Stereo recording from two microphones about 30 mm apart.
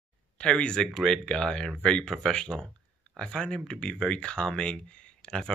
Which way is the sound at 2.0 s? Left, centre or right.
Left.